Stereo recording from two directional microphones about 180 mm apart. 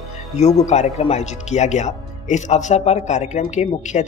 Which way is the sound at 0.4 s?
40° left (ahead or behind).